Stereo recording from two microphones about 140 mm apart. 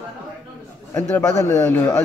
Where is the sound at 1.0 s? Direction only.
15° left (ahead or behind).